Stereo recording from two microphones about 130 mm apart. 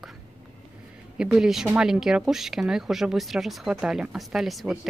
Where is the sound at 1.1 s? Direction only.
5° right (ahead or behind).